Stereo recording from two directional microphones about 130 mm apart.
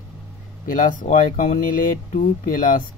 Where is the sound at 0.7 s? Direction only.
90° left.